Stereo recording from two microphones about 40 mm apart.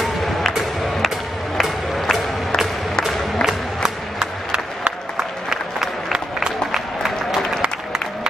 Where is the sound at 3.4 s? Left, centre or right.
Centre.